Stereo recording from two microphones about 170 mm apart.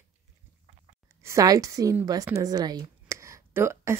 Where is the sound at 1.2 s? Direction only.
20° right (ahead or behind).